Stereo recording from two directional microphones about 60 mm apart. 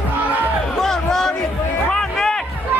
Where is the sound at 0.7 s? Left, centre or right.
Centre.